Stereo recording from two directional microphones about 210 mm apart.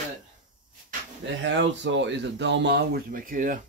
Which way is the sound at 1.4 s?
60° right (ahead or behind).